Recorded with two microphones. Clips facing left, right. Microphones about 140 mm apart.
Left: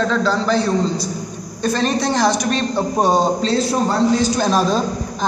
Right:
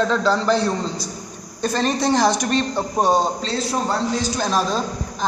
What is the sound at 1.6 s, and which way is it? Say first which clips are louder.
Speech: left 2 dB; 10° right (ahead or behind).